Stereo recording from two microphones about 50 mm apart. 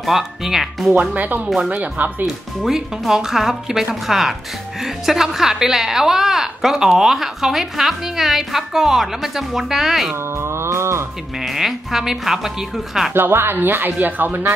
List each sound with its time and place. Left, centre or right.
0.0 s speech: centre
1.1 s speech: right
2.2 s a woman's voice: centre
10.3 s mantra: right
11.4 s speech: centre
13.1 s speech: right